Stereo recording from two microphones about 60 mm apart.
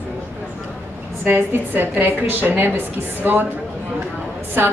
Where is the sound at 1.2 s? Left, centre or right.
Right.